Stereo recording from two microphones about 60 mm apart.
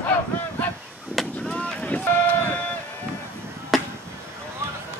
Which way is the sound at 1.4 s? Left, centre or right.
Centre.